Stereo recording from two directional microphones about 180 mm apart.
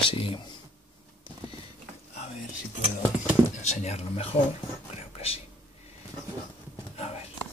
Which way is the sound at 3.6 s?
40° left (ahead or behind).